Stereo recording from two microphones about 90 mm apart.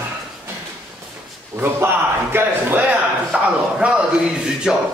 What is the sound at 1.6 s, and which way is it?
A man's voice, 25° right (ahead or behind).